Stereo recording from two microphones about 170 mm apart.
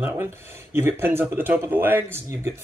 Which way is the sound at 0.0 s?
10° right (ahead or behind).